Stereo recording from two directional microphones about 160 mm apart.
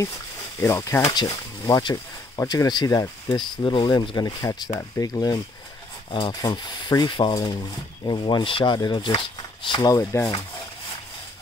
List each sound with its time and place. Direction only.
0.6 s speech: 15° left (ahead or behind)